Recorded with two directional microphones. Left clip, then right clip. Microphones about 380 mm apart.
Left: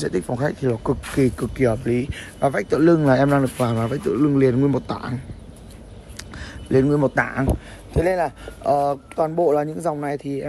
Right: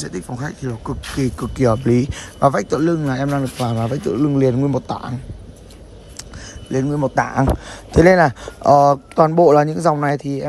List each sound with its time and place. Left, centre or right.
0.0 s speech: centre
6.1 s a sound: centre
7.9 s speech: centre